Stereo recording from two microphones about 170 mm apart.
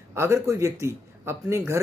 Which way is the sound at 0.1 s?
15° right (ahead or behind).